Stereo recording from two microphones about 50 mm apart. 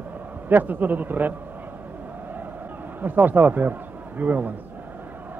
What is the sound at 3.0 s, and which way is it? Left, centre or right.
A man's voice, right.